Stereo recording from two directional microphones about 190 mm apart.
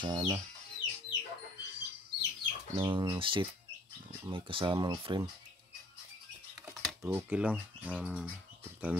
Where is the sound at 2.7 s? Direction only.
25° right (ahead or behind).